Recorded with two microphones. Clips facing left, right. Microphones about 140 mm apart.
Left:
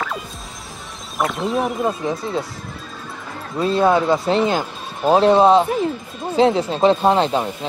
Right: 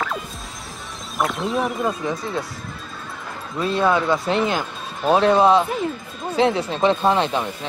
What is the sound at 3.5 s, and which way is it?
Speech, 30° left (ahead or behind).